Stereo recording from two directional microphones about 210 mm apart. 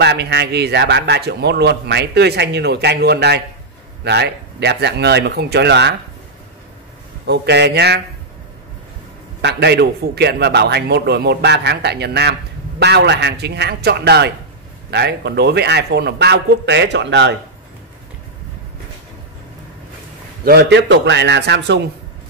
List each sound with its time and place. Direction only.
0.0 s a man's voice: 55° right (ahead or behind)
7.2 s a man's voice: 55° right (ahead or behind)
9.4 s a man's voice: 50° right (ahead or behind)
20.4 s a man's voice: 50° right (ahead or behind)